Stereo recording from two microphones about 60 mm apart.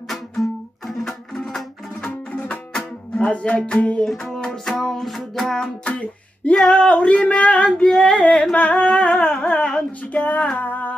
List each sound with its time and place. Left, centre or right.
0.1 s music: centre
2.3 s music: left
4.0 s music: centre
5.9 s music: left
6.5 s singing: centre
10.1 s music: left